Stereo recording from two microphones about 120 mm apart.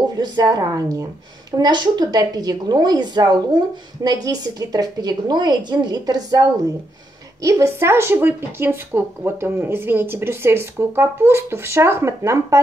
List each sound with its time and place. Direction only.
0.1 s a woman's voice: 35° right (ahead or behind)
7.4 s a woman's voice: 25° right (ahead or behind)